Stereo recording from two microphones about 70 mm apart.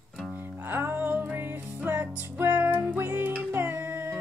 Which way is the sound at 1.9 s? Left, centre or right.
Right.